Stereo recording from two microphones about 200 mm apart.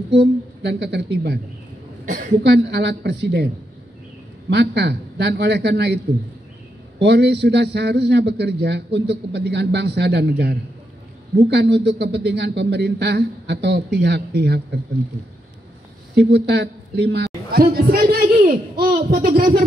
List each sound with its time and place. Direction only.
0.1 s a man's voice: 60° right (ahead or behind)
2.0 s a woman's voice: 40° right (ahead or behind)
2.4 s a man's voice: 55° right (ahead or behind)
4.5 s a man's voice: 55° right (ahead or behind)
7.0 s a man's voice: 55° right (ahead or behind)
16.2 s a man's voice: 55° right (ahead or behind)